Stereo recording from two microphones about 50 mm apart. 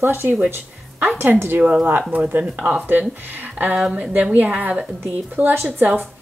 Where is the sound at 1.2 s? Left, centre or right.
Right.